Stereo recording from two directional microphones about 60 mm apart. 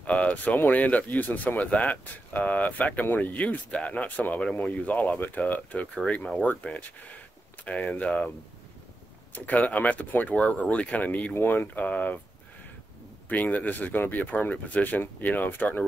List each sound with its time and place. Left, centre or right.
0.0 s a sound: left
0.7 s speech: left
9.3 s speech: left
13.3 s speech: left